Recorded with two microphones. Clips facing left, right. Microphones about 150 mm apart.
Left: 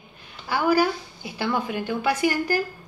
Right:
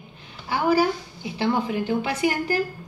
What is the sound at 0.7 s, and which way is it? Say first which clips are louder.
Speech: right 1 dB; 25° right (ahead or behind).